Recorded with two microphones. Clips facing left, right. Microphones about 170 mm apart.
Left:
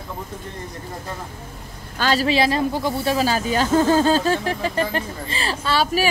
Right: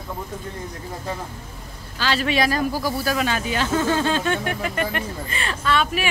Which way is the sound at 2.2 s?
25° left (ahead or behind).